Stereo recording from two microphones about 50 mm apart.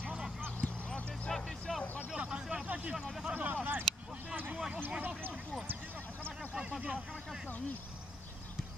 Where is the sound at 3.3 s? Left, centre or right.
Right.